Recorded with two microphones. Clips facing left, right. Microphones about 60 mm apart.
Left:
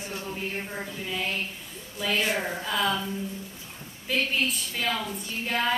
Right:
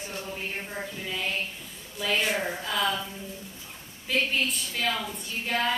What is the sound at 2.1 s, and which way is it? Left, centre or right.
Speech, centre.